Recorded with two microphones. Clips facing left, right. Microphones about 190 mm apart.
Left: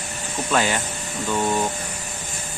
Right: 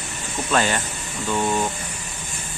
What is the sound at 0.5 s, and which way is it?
Speech, 10° left (ahead or behind).